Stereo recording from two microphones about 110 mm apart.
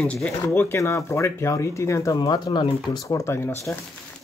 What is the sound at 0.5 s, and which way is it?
Speech, 25° left (ahead or behind).